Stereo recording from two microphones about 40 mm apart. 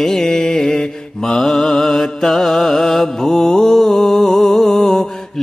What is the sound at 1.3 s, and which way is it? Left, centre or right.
Mantra, centre.